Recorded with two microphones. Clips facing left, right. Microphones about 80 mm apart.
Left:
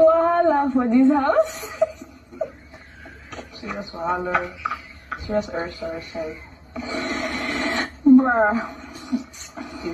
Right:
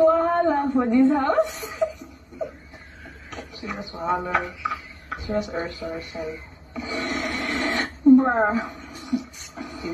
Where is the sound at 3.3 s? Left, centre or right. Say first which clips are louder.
Left 1 dB; left.